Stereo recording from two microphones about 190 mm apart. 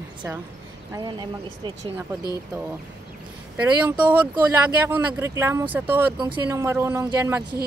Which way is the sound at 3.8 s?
10° right (ahead or behind).